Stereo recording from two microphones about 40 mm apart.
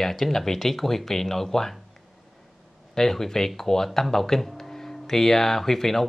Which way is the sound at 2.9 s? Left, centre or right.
Centre.